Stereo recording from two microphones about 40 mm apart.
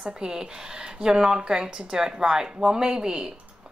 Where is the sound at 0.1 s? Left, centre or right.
Centre.